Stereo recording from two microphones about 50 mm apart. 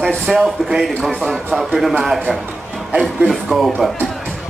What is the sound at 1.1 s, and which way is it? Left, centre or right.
Speech, centre.